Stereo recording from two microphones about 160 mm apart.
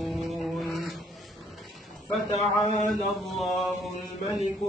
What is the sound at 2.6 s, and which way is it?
Speech, 50° right (ahead or behind).